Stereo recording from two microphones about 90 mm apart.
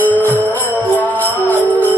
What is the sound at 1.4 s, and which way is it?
Music, 20° left (ahead or behind).